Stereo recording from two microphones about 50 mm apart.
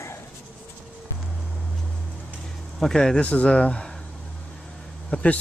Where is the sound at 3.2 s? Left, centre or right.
Left.